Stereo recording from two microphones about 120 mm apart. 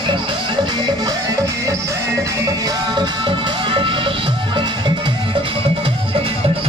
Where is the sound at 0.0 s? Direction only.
45° right (ahead or behind).